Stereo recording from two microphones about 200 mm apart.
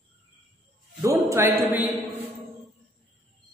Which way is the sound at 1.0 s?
15° right (ahead or behind).